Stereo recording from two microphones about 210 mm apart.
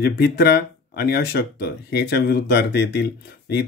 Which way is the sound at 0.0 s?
50° left (ahead or behind).